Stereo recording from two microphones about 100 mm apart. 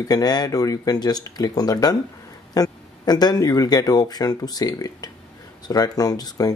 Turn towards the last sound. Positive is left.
turn(degrees=40)  # may be behind; listen again after turning